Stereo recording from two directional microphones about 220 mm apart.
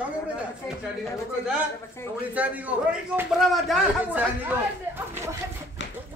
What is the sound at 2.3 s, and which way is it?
A man's voice, 5° right (ahead or behind).